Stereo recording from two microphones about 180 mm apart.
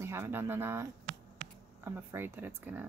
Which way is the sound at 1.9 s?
15° right (ahead or behind).